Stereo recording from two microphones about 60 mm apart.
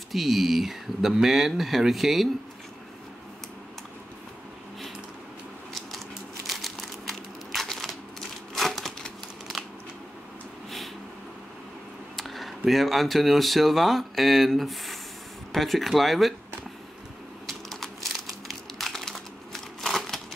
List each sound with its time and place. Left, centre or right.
0.1 s speech: centre
6.4 s crumpling: centre
12.2 s speech: centre
17.5 s crumpling: centre